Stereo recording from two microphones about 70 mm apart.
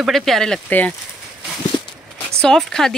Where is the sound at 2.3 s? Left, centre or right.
Centre.